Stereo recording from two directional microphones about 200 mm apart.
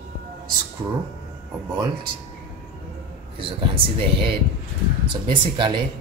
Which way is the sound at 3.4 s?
25° right (ahead or behind).